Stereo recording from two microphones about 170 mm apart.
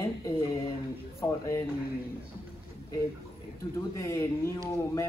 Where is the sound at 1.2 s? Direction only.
15° left (ahead or behind).